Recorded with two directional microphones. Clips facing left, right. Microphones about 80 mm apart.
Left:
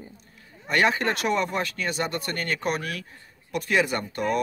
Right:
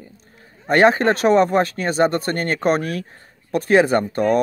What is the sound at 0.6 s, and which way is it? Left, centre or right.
Speech, right.